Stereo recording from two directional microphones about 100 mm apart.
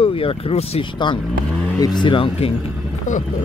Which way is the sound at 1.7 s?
45° left (ahead or behind).